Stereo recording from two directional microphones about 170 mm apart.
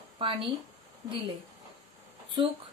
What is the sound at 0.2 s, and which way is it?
Speech, 30° right (ahead or behind).